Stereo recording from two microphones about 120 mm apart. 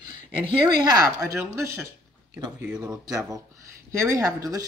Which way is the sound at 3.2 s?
25° right (ahead or behind).